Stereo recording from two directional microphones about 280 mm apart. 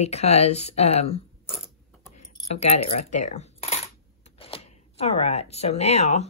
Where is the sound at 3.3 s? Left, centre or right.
Left.